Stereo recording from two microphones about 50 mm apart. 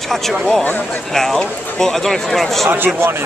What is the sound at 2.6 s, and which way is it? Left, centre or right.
Speech, right.